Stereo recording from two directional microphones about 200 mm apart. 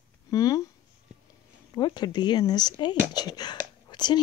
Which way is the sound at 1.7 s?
20° left (ahead or behind).